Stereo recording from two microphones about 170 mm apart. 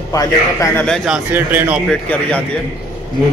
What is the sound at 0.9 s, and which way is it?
Speech, 5° right (ahead or behind).